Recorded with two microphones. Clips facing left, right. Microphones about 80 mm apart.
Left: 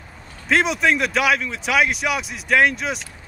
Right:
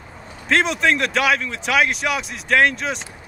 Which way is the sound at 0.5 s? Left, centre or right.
Centre.